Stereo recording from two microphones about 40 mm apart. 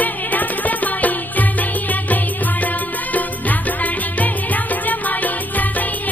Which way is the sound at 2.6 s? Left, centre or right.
Left.